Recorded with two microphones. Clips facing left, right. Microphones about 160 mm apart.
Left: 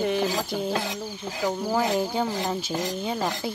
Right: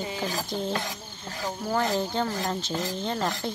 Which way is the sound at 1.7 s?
5° left (ahead or behind).